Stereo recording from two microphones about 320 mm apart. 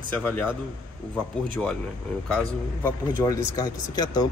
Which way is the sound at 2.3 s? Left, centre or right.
Centre.